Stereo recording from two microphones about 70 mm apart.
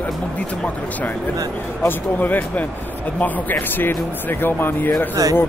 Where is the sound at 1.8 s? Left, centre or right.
Left.